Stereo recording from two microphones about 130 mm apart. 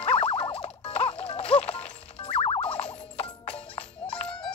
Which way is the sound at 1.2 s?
50° left (ahead or behind).